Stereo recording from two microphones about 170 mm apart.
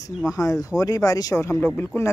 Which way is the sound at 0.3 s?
20° left (ahead or behind).